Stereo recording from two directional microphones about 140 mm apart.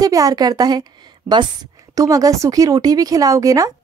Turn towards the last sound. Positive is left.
turn(degrees=-25)  # may be behind; listen again after turning